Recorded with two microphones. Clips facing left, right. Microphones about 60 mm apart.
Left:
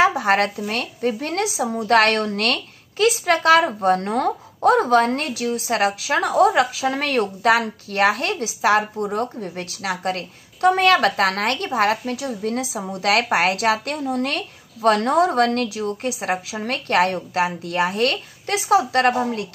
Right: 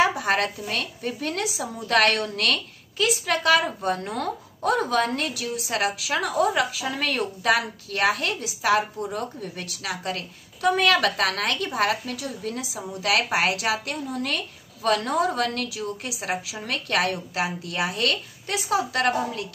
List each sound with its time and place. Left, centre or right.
0.1 s a woman's voice: left